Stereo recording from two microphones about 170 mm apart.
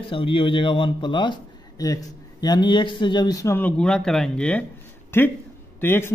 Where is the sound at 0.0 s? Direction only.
30° left (ahead or behind).